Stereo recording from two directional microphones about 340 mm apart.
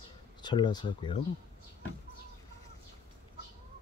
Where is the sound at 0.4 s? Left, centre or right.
Centre.